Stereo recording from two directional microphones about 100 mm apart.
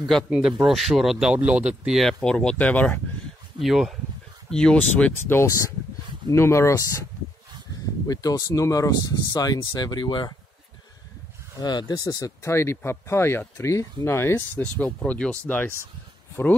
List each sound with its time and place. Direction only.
0.3 s speech: 10° right (ahead or behind)
2.2 s speech: 10° left (ahead or behind)
3.5 s speech: centre (ahead or behind)
4.5 s speech: 10° left (ahead or behind)
5.4 s speech: 30° left (ahead or behind)
8.1 s speech: 35° left (ahead or behind)
11.6 s speech: 40° left (ahead or behind); by 15.7 s 15° left (ahead or behind)